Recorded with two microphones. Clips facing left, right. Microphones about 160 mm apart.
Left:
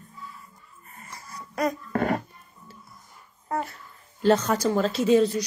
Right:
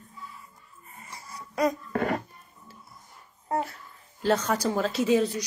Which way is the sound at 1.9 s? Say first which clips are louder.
Left 2 dB; 50° left (ahead or behind).